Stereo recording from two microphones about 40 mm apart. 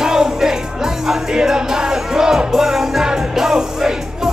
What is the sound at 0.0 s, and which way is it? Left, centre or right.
Music, centre.